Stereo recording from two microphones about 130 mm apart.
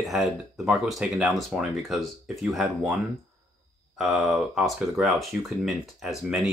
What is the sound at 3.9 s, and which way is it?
Speech, centre (ahead or behind).